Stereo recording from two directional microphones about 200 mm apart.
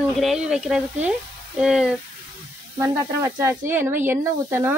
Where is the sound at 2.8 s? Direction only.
15° right (ahead or behind).